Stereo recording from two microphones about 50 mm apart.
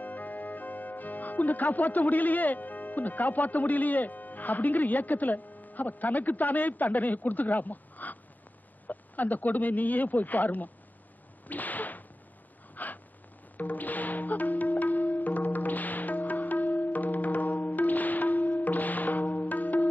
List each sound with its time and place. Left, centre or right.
0.0 s speech: left
11.4 s whip: left
12.7 s a sound: left
13.6 s music: left